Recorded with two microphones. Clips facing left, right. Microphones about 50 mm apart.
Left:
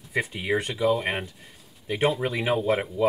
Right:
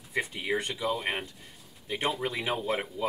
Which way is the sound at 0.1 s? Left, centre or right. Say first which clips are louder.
Left 4 dB; left.